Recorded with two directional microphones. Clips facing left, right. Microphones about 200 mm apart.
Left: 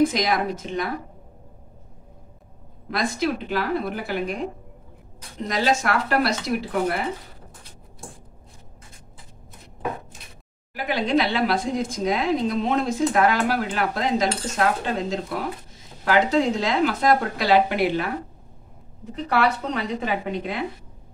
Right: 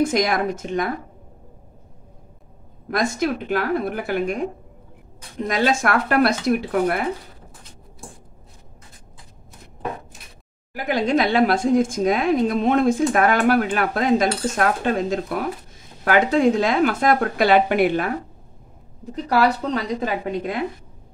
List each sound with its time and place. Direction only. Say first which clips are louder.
0.0 s speech: right 1 dB; 50° right (ahead or behind)
2.9 s speech: right 2 dB; 45° right (ahead or behind)
5.5 s speech: right 2 dB; 50° right (ahead or behind)
10.7 s speech: right 2 dB; 45° right (ahead or behind)
19.2 s a woman's voice: right 3 dB; 35° right (ahead or behind)